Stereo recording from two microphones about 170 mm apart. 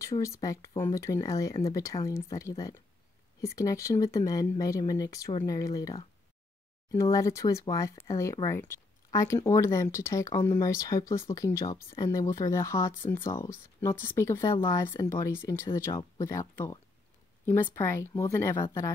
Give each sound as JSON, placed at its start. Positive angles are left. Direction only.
{"t": 0.2, "sound": "speech", "side_deg": 20}